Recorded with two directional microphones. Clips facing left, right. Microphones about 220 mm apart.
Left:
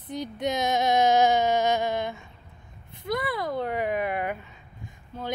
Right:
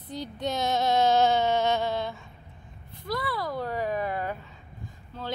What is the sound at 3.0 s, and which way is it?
Speech, 20° left (ahead or behind).